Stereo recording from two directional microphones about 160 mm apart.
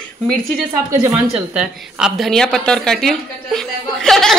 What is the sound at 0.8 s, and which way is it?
Speech, 20° right (ahead or behind).